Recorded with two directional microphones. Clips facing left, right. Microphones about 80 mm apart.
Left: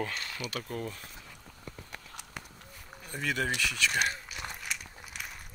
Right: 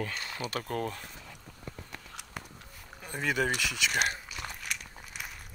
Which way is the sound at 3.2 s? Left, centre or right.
Centre.